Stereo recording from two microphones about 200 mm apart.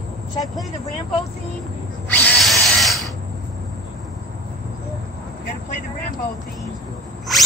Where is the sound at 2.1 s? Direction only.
5° left (ahead or behind).